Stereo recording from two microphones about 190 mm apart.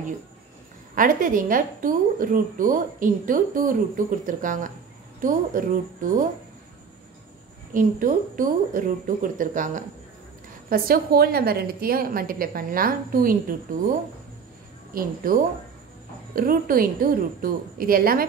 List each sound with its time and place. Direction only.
0.9 s a woman's voice: 45° right (ahead or behind)
7.7 s a woman's voice: 45° right (ahead or behind)
16.3 s a woman's voice: 50° right (ahead or behind)